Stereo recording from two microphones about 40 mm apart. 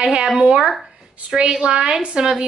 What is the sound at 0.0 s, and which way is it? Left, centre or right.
Speech, right.